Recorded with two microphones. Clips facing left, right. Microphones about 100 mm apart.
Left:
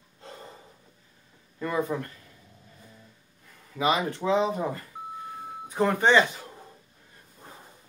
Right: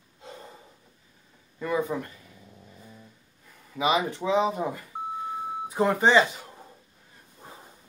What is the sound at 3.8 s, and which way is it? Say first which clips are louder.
Speech: even; 15° right (ahead or behind).